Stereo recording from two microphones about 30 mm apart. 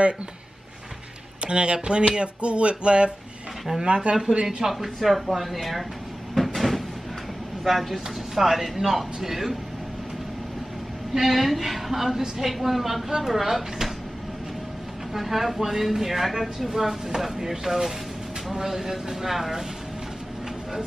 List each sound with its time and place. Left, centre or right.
1.4 s speech: right
4.5 s speech: centre
4.7 s a woman's voice: centre
6.3 s cupboard open or close: centre
7.6 s speech: centre
11.1 s a woman's voice: centre
15.1 s speech: centre